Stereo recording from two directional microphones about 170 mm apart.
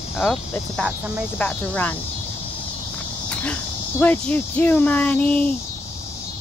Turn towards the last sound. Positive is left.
turn(degrees=10)  # may be behind; listen again after turning